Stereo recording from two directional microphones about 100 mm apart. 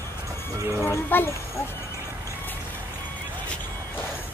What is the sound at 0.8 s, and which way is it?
Speech, 25° left (ahead or behind).